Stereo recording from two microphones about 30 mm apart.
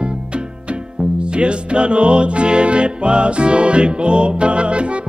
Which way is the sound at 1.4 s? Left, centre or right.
Right.